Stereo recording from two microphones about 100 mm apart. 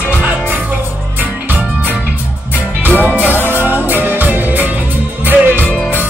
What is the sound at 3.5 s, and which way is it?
Music, 20° right (ahead or behind).